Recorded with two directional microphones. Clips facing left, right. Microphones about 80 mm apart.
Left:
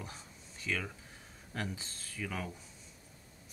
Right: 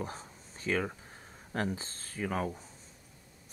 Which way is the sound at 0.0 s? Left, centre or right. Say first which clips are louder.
Right 8 dB; right.